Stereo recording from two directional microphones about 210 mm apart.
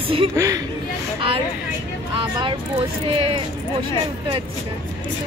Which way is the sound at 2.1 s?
25° right (ahead or behind).